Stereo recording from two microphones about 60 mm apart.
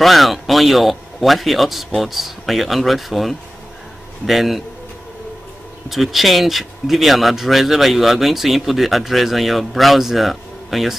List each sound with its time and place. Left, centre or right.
0.0 s speech: centre
5.9 s speech: centre